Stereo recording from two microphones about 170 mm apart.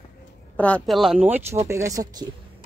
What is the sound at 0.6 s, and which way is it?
A woman's voice, 5° left (ahead or behind).